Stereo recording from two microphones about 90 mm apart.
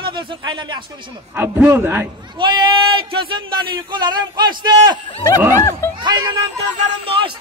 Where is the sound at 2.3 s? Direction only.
60° right (ahead or behind).